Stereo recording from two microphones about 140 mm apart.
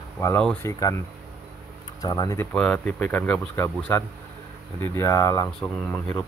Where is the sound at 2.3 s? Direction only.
5° left (ahead or behind); by 5.5 s 25° left (ahead or behind).